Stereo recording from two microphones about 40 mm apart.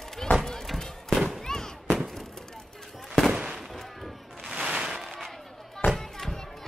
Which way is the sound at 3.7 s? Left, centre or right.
Centre.